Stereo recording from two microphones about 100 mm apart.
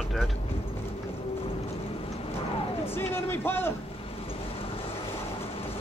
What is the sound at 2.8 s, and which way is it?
Speech, 25° left (ahead or behind).